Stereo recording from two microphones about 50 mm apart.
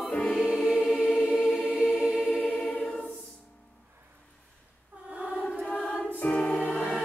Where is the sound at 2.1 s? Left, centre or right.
Centre.